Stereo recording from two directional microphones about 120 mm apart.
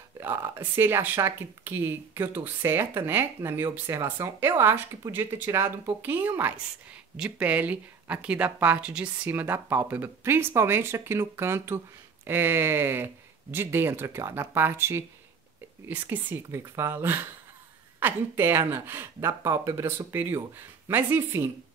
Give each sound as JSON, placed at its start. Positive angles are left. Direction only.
{"t": 0.2, "sound": "speech", "side_deg": -20}